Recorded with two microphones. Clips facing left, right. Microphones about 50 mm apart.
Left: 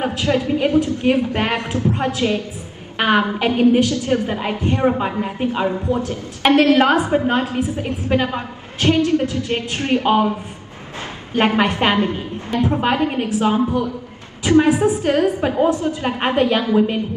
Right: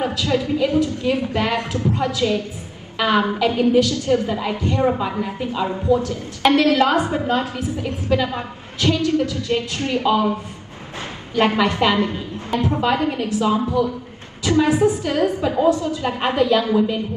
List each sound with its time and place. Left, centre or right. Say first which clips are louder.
0.0 s a woman's voice: left 2 dB; left
11.3 s a woman's voice: left 1 dB; left
14.4 s a sound: left 4 dB; left
15.0 s a woman's voice: left 3 dB; left